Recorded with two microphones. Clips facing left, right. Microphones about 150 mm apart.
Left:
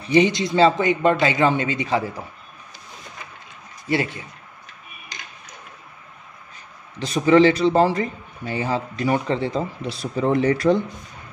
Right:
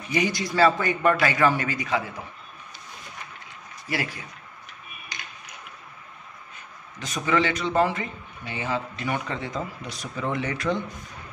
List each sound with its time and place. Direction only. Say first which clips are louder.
0.0 s a man's voice: left 8 dB; 25° left (ahead or behind)
3.9 s a man's voice: left 7 dB; 25° left (ahead or behind)
7.0 s a man's voice: left 9 dB; 30° left (ahead or behind)